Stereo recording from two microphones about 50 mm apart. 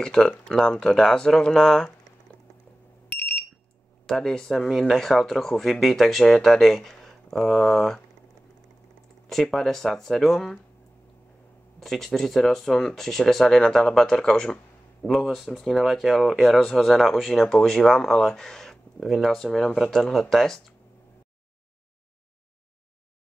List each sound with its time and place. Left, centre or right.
0.0 s speech: centre
3.1 s alarm: left
4.0 s speech: centre
9.3 s speech: centre
11.8 s speech: centre